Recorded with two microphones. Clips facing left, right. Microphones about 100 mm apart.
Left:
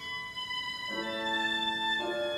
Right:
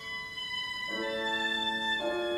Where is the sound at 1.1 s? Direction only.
15° left (ahead or behind).